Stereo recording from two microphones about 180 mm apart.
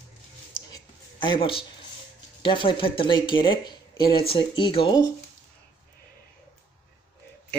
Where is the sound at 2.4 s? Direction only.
25° left (ahead or behind).